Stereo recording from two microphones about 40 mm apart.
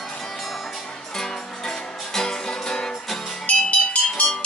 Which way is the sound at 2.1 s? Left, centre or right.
Centre.